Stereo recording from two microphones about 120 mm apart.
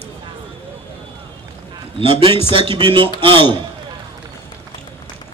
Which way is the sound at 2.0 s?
45° right (ahead or behind).